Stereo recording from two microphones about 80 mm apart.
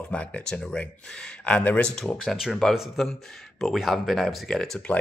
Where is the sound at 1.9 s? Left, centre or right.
Centre.